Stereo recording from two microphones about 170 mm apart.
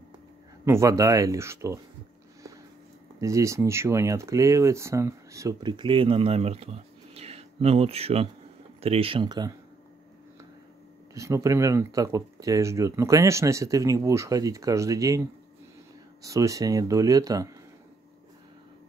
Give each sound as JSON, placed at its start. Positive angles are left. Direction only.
{"t": 0.7, "sound": "speech", "side_deg": -20}
{"t": 3.2, "sound": "speech", "side_deg": -20}
{"t": 11.1, "sound": "speech", "side_deg": -15}